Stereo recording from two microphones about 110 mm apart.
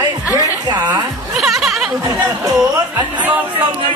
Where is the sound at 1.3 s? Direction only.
5° right (ahead or behind).